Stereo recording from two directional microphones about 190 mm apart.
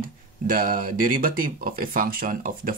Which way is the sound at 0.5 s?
45° right (ahead or behind).